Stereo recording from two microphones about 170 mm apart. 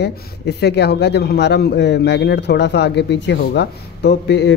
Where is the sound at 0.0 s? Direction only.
80° left.